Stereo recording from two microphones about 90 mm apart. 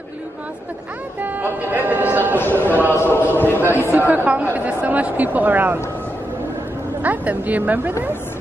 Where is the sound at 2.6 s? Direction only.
20° right (ahead or behind).